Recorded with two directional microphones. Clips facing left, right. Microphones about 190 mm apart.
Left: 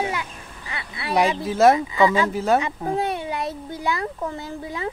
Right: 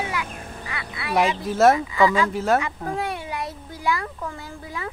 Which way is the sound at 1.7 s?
25° left (ahead or behind).